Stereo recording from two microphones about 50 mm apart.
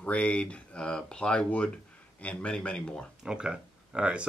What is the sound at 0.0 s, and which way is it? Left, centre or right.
Speech, left.